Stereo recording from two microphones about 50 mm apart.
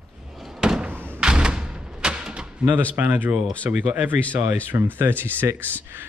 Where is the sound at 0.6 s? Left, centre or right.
Centre.